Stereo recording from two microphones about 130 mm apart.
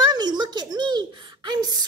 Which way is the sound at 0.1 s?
35° right (ahead or behind).